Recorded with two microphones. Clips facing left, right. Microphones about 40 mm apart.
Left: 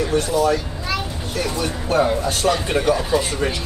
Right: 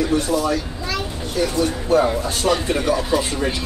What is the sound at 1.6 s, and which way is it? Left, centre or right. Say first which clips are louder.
Speech: right 2 dB; left.